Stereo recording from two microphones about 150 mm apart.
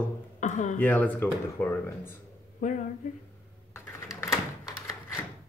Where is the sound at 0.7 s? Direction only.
10° left (ahead or behind).